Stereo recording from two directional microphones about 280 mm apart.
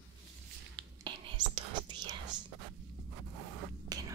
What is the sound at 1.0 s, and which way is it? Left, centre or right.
Whispering, centre.